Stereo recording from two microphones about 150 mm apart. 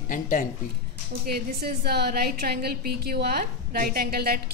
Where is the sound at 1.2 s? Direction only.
90° right.